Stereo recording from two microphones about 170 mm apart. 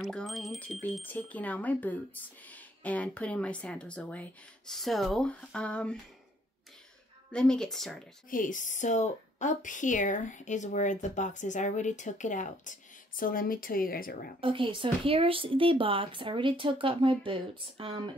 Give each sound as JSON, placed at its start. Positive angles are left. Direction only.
{"t": 0.0, "sound": "speech", "side_deg": 0}
{"t": 7.3, "sound": "speech", "side_deg": 5}
{"t": 8.3, "sound": "a woman's voice", "side_deg": 50}
{"t": 14.4, "sound": "speech", "side_deg": -30}